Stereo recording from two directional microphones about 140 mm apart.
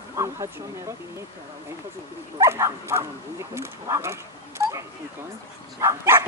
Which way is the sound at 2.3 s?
20° right (ahead or behind).